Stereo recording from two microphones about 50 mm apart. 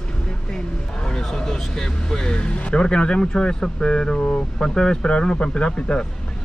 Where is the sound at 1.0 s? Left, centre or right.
Centre.